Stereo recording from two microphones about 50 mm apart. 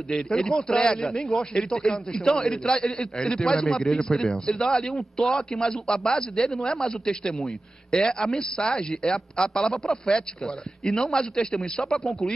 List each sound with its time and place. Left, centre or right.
0.1 s a man's voice: centre